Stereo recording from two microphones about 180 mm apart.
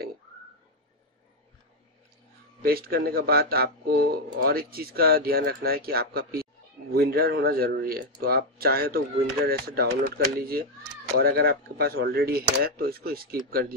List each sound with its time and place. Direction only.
2.6 s speech: 55° right (ahead or behind)